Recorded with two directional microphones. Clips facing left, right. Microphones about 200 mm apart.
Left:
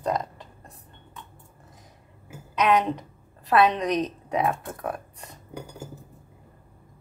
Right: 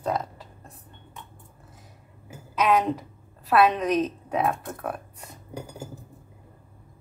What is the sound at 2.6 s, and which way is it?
A woman's voice, 5° right (ahead or behind).